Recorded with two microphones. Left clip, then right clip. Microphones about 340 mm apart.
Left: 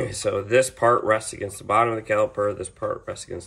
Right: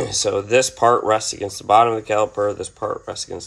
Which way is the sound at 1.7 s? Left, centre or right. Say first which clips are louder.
Right 5 dB; centre.